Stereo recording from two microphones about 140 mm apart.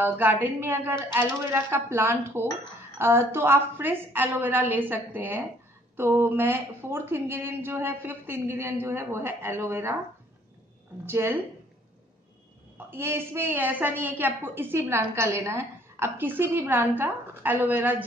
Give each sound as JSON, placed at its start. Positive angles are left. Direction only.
{"t": 0.0, "sound": "a woman's voice", "side_deg": -15}
{"t": 11.1, "sound": "a woman's voice", "side_deg": -15}
{"t": 12.7, "sound": "a woman's voice", "side_deg": -15}